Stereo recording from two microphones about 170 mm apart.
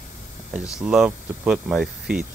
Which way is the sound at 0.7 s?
5° right (ahead or behind).